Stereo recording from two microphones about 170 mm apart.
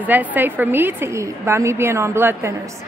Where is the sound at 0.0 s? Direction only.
10° right (ahead or behind).